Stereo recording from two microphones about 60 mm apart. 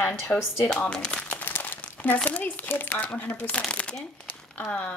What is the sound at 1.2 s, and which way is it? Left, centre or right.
Crumpling, left.